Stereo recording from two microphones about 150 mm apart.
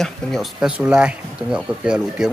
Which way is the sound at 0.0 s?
Centre (ahead or behind).